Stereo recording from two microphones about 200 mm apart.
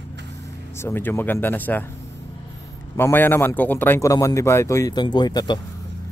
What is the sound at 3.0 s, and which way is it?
A man's voice, 10° left (ahead or behind).